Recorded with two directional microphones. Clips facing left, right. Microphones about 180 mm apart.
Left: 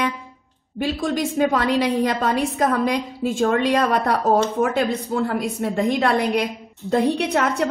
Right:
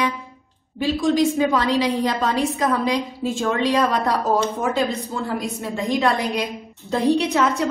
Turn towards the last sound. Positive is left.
turn(degrees=60)  # may be behind; listen again after turning